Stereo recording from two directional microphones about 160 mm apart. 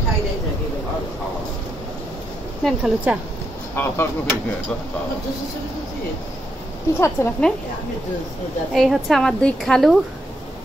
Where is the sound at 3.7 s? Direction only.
15° left (ahead or behind).